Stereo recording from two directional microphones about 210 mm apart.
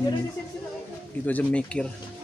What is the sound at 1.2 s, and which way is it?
Speech, 5° left (ahead or behind).